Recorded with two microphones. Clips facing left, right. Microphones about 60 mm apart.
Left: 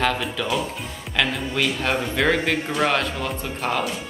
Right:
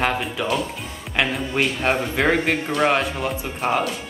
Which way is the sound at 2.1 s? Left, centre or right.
Centre.